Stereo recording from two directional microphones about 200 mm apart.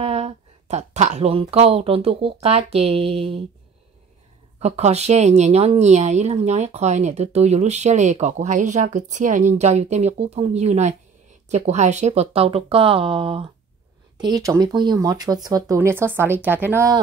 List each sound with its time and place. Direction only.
0.0 s speech: 30° right (ahead or behind)
4.6 s speech: 35° right (ahead or behind); by 17.0 s 15° right (ahead or behind)